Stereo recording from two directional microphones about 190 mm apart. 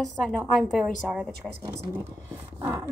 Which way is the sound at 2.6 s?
10° right (ahead or behind).